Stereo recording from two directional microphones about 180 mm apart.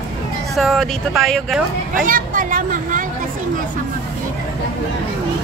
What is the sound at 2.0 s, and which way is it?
A woman's voice, 50° right (ahead or behind).